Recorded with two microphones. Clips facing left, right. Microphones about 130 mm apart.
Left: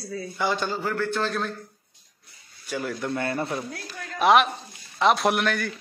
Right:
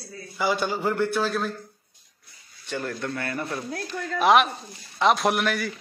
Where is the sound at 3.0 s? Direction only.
25° left (ahead or behind).